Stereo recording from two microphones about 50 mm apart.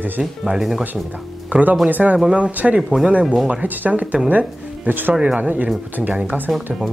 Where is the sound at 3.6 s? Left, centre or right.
Right.